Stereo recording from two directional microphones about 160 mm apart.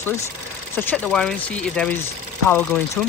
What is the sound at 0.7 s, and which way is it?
Speech, 10° left (ahead or behind).